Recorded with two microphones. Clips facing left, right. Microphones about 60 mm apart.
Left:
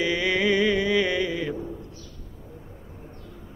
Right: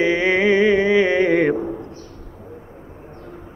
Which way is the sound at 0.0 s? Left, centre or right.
Right.